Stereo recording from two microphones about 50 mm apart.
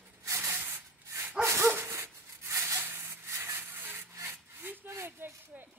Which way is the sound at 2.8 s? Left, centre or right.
Right.